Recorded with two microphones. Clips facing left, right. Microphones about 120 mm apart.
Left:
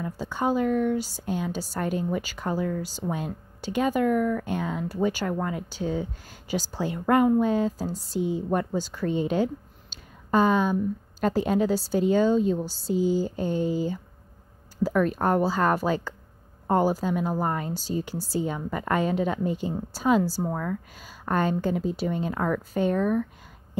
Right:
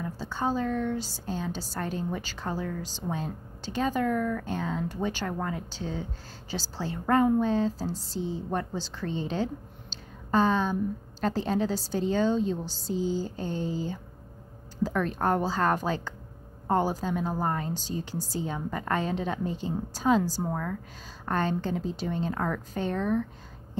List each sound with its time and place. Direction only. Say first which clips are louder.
0.0 s a woman's voice: left 3 dB; 15° left (ahead or behind)
14.8 s a sound: left 5 dB; 10° left (ahead or behind)
15.1 s a woman's voice: left 3 dB; 10° left (ahead or behind)
17.7 s a woman's voice: left 4 dB; 45° left (ahead or behind)
18.5 s a woman's voice: left 3 dB; 10° left (ahead or behind)